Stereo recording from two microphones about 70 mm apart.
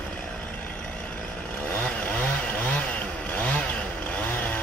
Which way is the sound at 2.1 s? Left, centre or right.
Centre.